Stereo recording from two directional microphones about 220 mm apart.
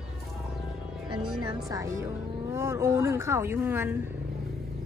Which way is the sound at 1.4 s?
15° right (ahead or behind).